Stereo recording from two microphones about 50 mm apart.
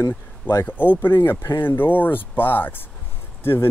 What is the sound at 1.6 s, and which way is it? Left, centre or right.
Speech, left.